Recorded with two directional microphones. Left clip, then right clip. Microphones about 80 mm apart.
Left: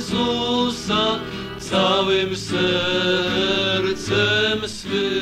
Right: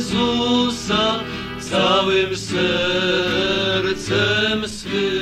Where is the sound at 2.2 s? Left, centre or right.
Right.